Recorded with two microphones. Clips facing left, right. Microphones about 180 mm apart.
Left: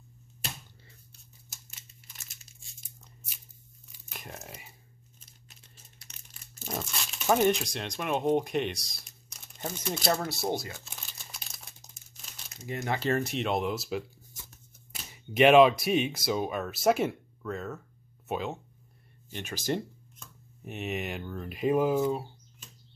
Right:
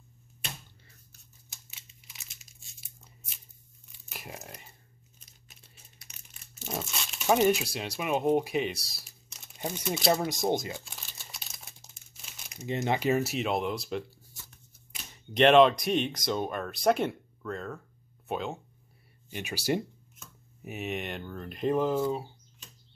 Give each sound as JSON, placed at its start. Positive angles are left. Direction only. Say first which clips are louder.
{"t": 1.5, "sound": "crumpling", "louder": "even", "side_deg": 0}
{"t": 4.1, "sound": "tearing", "louder": "right 1 dB", "side_deg": -5}
{"t": 4.5, "sound": "speech", "louder": "left 1 dB", "side_deg": 5}
{"t": 6.1, "sound": "crushing", "louder": "even", "side_deg": -10}
{"t": 6.6, "sound": "speech", "louder": "even", "side_deg": 0}
{"t": 9.8, "sound": "speech", "louder": "right 2 dB", "side_deg": 0}
{"t": 10.1, "sound": "speech", "louder": "right 3 dB", "side_deg": -15}
{"t": 10.8, "sound": "crumpling", "louder": "even", "side_deg": 0}
{"t": 12.5, "sound": "speech", "louder": "right 3 dB", "side_deg": -20}
{"t": 13.1, "sound": "speech", "louder": "right 1 dB", "side_deg": -5}
{"t": 15.3, "sound": "speech", "louder": "left 1 dB", "side_deg": 5}
{"t": 19.3, "sound": "speech", "louder": "right 2 dB", "side_deg": -10}